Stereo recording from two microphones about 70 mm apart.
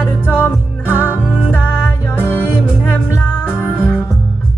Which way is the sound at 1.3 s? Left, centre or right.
Left.